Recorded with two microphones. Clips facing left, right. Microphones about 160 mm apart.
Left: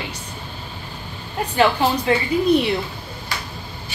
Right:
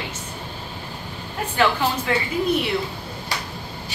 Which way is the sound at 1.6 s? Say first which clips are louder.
Left 3 dB; 25° left (ahead or behind).